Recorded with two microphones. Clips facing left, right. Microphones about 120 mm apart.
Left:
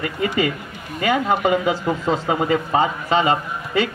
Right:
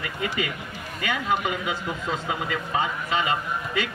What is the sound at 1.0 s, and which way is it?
Speech, 40° left (ahead or behind).